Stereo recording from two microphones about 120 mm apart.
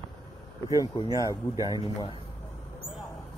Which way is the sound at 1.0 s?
30° right (ahead or behind).